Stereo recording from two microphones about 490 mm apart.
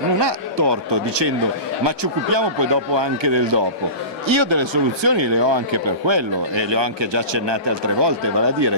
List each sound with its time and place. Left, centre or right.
0.2 s speech: right